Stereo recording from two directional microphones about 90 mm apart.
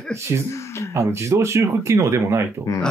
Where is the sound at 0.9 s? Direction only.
30° right (ahead or behind).